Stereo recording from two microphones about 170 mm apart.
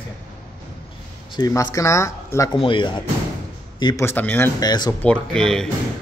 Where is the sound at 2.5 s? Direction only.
30° left (ahead or behind).